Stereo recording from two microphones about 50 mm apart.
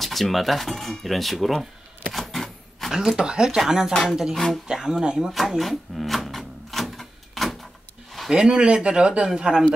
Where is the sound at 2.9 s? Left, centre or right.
Centre.